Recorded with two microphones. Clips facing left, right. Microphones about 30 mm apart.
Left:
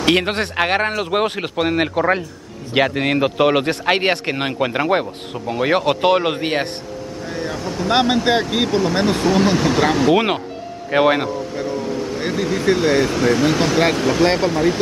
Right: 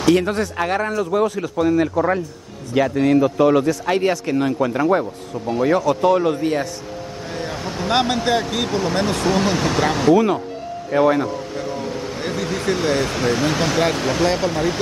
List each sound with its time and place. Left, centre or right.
0.0 s speech: left
7.2 s vehicle: centre
7.5 s speech: centre
7.9 s speech: centre
10.1 s speech: left
11.2 s speech: centre
11.7 s speech: centre
12.2 s speech: centre
14.2 s speech: centre
14.5 s speech: centre